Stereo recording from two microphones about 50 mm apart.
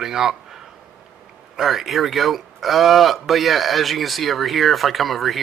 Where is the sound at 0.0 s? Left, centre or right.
Centre.